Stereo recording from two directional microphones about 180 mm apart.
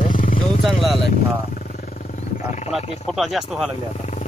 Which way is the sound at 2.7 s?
35° left (ahead or behind).